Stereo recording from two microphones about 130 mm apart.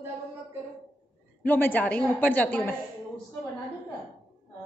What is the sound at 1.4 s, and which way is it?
A woman's voice, 15° left (ahead or behind).